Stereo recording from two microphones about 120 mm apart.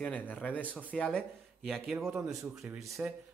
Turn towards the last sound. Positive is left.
turn(degrees=-5)  # may be behind; listen again after turning